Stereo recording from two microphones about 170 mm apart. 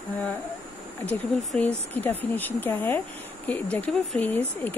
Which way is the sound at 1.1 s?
10° left (ahead or behind).